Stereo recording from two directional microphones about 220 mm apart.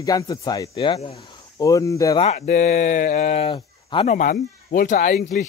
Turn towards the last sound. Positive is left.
turn(degrees=35)  # may be behind; listen again after turning